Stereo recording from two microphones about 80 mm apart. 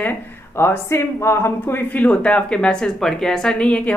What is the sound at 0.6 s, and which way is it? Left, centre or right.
A woman's voice, left.